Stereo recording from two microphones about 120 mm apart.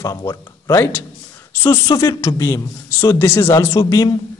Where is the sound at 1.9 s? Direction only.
30° left (ahead or behind).